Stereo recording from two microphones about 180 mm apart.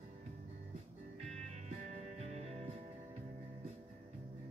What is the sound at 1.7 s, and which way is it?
Music, 40° right (ahead or behind).